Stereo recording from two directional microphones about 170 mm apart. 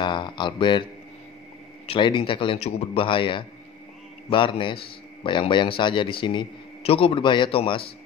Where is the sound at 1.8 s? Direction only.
30° left (ahead or behind).